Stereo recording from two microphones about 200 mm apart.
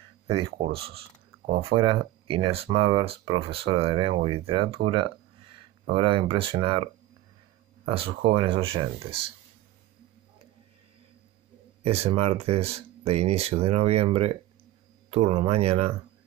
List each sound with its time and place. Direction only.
0.3 s speech: 25° right (ahead or behind)
11.8 s speech: 30° right (ahead or behind)